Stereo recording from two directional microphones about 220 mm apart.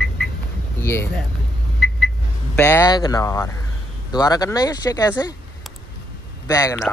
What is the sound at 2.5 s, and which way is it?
Speech, 10° left (ahead or behind).